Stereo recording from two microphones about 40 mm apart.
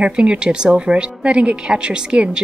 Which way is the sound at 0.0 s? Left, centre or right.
Right.